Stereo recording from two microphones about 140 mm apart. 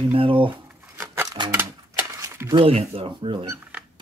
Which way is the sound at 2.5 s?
40° right (ahead or behind).